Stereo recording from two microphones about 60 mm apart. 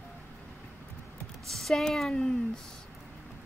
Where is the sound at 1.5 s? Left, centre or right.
Centre.